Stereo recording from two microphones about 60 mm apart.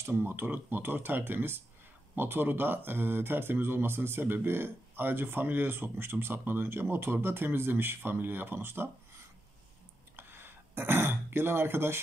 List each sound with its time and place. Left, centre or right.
0.0 s speech: right
10.1 s throat clearing: right